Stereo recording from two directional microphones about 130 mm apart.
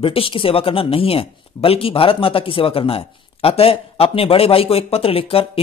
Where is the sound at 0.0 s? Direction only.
45° left (ahead or behind).